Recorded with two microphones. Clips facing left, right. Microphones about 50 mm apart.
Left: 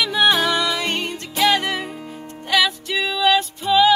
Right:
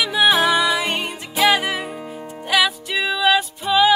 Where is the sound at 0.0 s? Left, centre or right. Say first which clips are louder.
Right 1 dB; centre.